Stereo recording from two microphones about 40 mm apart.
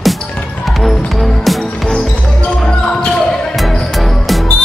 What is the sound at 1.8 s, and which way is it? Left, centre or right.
Music, centre.